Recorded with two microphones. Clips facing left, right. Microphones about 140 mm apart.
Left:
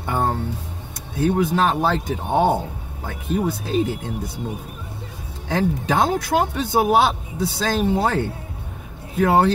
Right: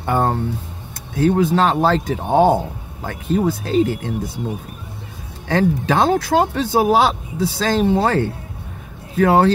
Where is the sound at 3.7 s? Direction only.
90° right.